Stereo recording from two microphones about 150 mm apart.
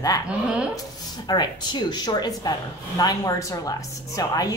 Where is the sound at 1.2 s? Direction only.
30° left (ahead or behind).